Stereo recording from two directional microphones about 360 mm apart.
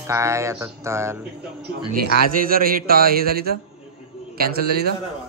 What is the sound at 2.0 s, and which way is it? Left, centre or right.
A man's voice, right.